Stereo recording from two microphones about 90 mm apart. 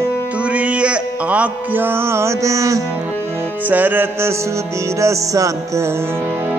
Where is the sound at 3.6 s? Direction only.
20° right (ahead or behind); by 5.9 s 35° right (ahead or behind).